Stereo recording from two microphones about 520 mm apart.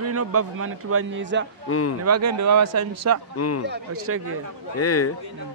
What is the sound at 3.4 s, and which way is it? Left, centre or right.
Speech, left.